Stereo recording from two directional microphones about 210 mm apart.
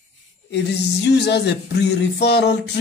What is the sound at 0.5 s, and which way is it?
Speech, 55° left (ahead or behind).